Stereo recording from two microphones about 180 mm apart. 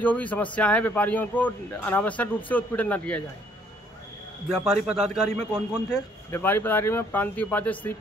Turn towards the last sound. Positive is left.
turn(degrees=10)  # may be behind; listen again after turning